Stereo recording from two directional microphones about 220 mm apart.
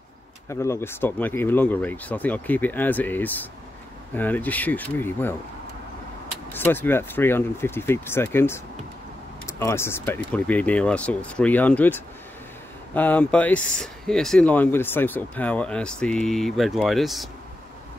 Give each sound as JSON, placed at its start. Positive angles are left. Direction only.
{"t": 0.5, "sound": "speech", "side_deg": 10}
{"t": 6.5, "sound": "speech", "side_deg": 10}